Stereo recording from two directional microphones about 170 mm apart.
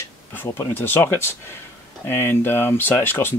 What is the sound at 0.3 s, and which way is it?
Speech, 15° left (ahead or behind).